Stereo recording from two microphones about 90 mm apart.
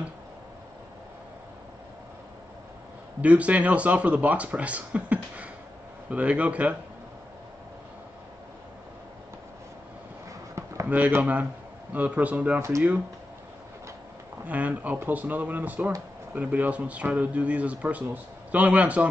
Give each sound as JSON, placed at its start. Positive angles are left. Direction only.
{"t": 3.2, "sound": "speech", "side_deg": -15}
{"t": 10.9, "sound": "speech", "side_deg": -20}
{"t": 14.4, "sound": "speech", "side_deg": -15}